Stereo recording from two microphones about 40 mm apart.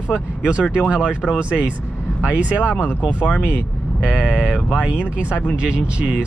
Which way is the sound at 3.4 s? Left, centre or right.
Right.